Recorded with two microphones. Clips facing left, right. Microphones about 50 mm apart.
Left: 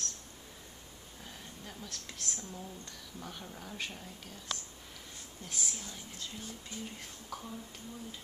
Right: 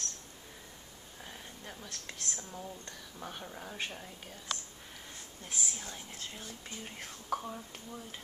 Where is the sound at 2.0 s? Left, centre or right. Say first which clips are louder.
Right 2 dB; centre.